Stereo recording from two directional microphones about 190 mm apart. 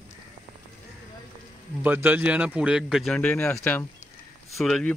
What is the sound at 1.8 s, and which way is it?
A man's voice, 10° right (ahead or behind).